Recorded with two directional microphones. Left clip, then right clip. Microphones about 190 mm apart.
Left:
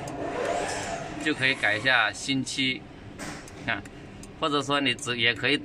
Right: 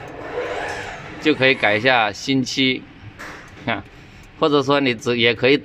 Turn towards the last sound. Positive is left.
turn(degrees=-30)  # may be behind; listen again after turning